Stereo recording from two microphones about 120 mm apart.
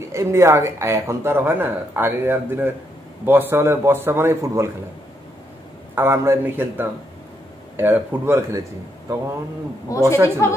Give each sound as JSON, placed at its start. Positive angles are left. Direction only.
{"t": 0.1, "sound": "speech", "side_deg": -25}
{"t": 5.9, "sound": "a man's voice", "side_deg": -20}
{"t": 9.8, "sound": "a woman's voice", "side_deg": 25}